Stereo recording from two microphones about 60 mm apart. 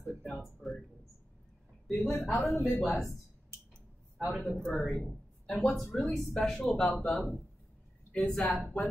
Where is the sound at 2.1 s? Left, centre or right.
Left.